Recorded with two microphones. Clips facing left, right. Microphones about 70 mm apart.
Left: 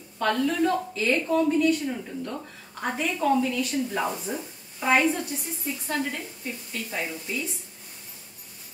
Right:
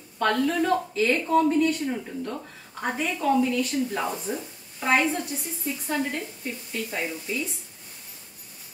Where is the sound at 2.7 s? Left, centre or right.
Centre.